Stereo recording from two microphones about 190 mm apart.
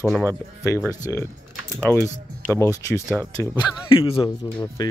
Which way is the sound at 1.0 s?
15° left (ahead or behind).